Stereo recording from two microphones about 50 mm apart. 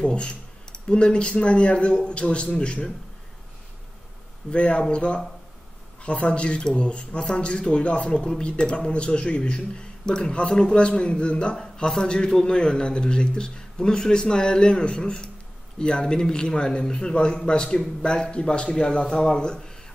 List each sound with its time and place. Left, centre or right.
0.0 s speech: centre
4.5 s a man's voice: left